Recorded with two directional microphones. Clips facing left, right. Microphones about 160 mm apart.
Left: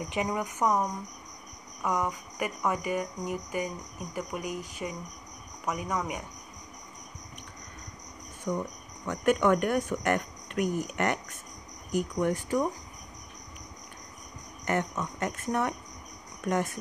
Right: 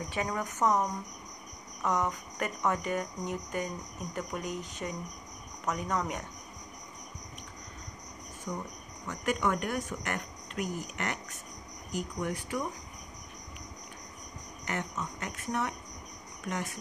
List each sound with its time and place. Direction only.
0.1 s speech: 15° left (ahead or behind)
9.0 s speech: 60° left (ahead or behind)
14.6 s speech: 55° left (ahead or behind)